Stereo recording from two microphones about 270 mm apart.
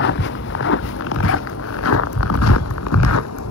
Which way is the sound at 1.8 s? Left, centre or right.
Left.